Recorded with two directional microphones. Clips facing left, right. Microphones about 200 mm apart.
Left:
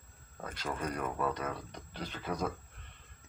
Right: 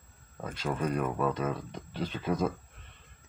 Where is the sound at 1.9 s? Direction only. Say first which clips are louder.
Right 7 dB; 20° right (ahead or behind).